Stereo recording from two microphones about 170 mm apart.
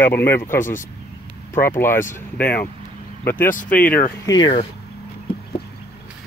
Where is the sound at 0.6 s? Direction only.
50° left (ahead or behind).